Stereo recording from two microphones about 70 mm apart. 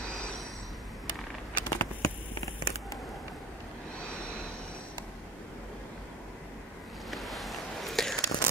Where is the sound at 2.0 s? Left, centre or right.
Left.